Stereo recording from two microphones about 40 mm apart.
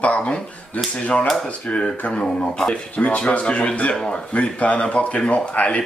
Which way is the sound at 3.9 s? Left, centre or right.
Centre.